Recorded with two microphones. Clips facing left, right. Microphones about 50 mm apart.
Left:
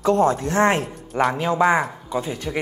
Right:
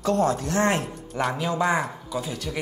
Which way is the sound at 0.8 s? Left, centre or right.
Centre.